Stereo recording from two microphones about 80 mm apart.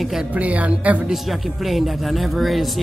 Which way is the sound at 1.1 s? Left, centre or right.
Centre.